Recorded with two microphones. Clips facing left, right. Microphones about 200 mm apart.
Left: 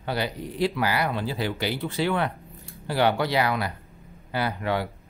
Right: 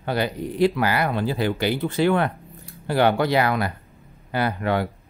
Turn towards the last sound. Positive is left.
turn(degrees=-50)  # may be behind; listen again after turning